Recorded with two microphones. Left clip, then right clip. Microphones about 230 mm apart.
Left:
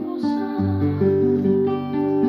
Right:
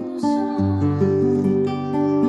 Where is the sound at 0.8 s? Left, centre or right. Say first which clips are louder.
Left 1 dB; right.